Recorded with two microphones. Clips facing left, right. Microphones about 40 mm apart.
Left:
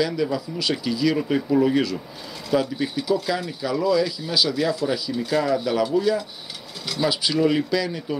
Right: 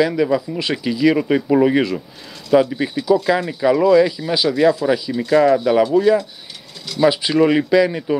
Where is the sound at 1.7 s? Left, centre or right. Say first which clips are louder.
Right 4 dB; right.